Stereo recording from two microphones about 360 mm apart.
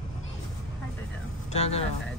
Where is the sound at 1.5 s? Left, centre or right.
Centre.